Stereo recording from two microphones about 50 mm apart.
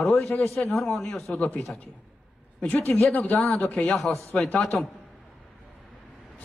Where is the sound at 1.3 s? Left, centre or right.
Left.